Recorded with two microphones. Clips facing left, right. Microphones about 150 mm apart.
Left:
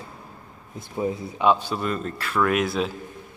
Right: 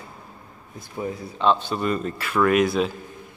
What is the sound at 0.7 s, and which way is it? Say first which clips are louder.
Speech: left 3 dB; 20° left (ahead or behind).